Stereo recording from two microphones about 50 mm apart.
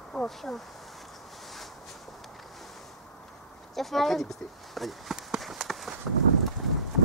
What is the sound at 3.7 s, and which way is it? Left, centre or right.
Speech, centre.